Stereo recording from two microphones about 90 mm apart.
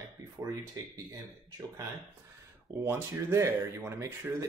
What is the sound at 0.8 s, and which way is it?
Speech, 35° right (ahead or behind).